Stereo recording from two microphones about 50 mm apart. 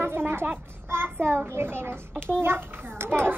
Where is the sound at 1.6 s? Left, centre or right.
Right.